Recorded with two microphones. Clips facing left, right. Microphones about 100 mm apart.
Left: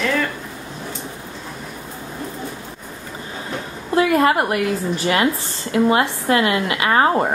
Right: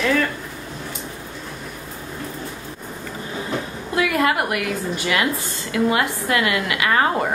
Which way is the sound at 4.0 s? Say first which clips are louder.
Left 4 dB; 30° left (ahead or behind).